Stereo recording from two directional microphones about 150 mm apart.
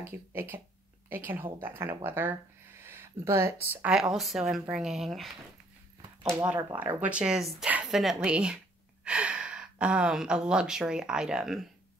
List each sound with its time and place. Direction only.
0.0 s speech: 15° right (ahead or behind); by 5.3 s centre (ahead or behind)
6.4 s speech: 10° right (ahead or behind)